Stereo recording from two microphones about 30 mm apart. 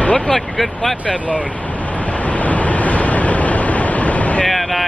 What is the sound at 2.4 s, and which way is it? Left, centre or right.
Vehicle, left.